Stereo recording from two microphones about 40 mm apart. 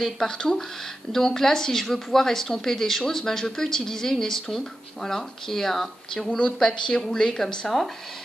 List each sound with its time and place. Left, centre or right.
0.0 s a woman's voice: centre